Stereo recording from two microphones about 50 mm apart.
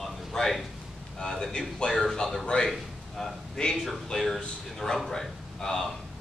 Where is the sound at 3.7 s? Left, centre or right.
Centre.